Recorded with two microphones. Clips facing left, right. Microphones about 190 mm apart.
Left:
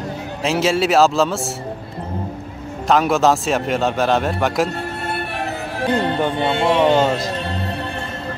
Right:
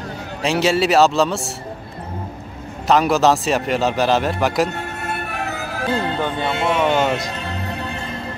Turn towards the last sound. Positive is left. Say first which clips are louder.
# left 3 dB
turn(degrees=30)  # may be behind; listen again after turning